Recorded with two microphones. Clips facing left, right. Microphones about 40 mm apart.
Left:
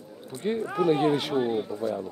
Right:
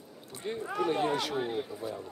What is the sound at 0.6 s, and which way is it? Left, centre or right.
Speech, centre.